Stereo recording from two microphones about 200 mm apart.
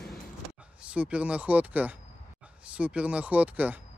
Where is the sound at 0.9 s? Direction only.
5° right (ahead or behind).